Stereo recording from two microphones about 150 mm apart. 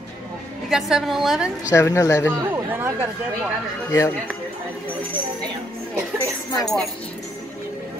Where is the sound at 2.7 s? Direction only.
10° right (ahead or behind).